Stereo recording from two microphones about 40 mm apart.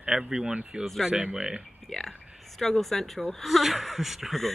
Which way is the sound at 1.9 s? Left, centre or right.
Centre.